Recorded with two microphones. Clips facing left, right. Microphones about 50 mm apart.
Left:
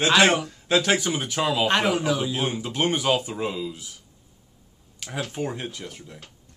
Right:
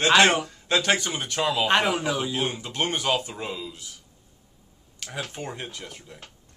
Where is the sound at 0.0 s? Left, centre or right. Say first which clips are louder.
Even; centre.